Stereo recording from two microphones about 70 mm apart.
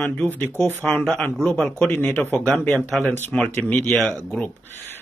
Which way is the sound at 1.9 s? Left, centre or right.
Left.